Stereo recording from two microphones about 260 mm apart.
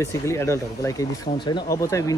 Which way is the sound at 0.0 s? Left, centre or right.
Centre.